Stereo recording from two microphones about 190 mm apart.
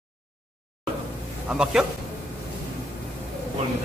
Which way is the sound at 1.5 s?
5° right (ahead or behind).